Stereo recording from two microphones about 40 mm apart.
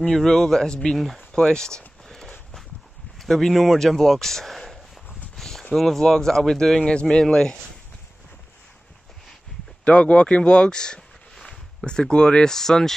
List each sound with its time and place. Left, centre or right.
0.1 s speech: centre
0.9 s speech: centre
1.3 s speech: centre
2.0 s a sound: centre
3.2 s speech: centre
5.3 s a sound: centre
5.8 s speech: centre
6.8 s speech: left
9.8 s speech: left
12.5 s speech: centre